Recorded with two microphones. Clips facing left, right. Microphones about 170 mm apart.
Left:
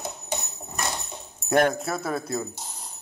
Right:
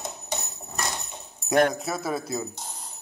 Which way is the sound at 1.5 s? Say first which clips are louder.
Even; centre (ahead or behind).